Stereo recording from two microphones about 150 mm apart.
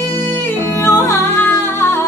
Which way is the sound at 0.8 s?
15° left (ahead or behind).